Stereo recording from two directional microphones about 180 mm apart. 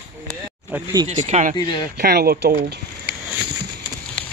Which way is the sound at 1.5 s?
20° left (ahead or behind).